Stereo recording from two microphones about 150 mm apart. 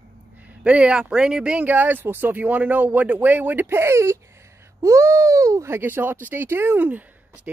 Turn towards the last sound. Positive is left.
turn(degrees=-10)  # may be behind; listen again after turning